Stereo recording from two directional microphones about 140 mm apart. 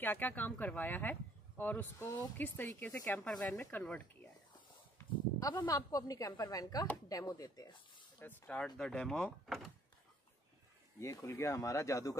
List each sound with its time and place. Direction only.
0.0 s speech: 15° left (ahead or behind)
4.9 s speech: 25° left (ahead or behind)
8.2 s speech: 15° left (ahead or behind)
11.0 s speech: 20° left (ahead or behind)